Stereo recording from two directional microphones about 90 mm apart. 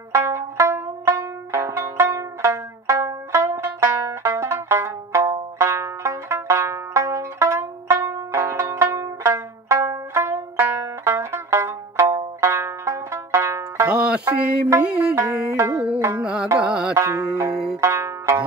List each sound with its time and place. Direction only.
0.1 s music: 30° right (ahead or behind)
12.2 s banjo: 35° right (ahead or behind)
13.8 s music: 10° right (ahead or behind)
15.5 s music: 30° right (ahead or behind)
16.2 s music: 10° right (ahead or behind)
16.9 s music: 35° right (ahead or behind)